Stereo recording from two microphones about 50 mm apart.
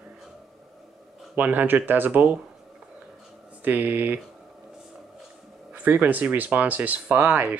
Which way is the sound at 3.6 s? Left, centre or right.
Right.